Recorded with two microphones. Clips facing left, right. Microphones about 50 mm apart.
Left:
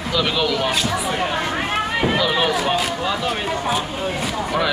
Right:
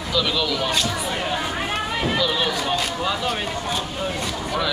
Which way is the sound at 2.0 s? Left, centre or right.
Centre.